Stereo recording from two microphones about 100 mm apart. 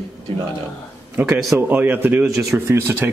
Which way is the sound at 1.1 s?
20° right (ahead or behind).